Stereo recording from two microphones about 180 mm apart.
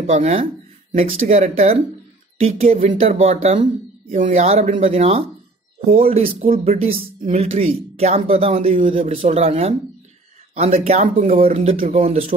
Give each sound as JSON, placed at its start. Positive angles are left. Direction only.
{"t": 0.0, "sound": "speech", "side_deg": -35}